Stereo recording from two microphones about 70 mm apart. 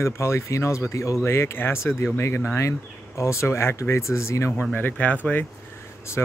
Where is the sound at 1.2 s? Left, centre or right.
Left.